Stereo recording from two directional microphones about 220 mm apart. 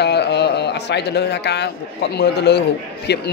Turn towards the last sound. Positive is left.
turn(degrees=50)  # may be behind; listen again after turning